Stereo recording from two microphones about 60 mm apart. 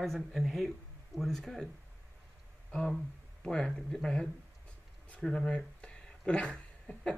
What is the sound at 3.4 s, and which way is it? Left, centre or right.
Speech, centre.